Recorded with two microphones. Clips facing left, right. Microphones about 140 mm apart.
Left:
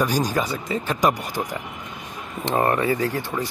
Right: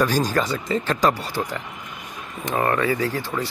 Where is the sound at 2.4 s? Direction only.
25° left (ahead or behind).